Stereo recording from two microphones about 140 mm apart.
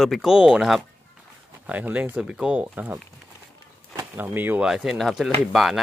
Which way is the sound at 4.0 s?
15° right (ahead or behind).